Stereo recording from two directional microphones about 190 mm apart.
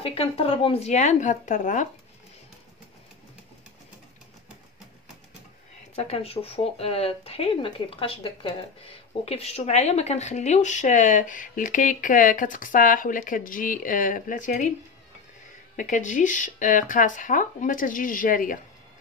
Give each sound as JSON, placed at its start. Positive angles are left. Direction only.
{"t": 0.0, "sound": "speech", "side_deg": 30}
{"t": 5.9, "sound": "speech", "side_deg": 35}
{"t": 15.7, "sound": "speech", "side_deg": 45}